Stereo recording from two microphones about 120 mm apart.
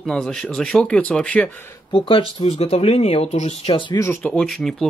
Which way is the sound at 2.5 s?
55° left (ahead or behind).